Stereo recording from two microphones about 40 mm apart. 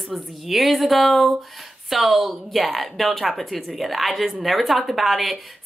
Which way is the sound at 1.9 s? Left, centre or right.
Centre.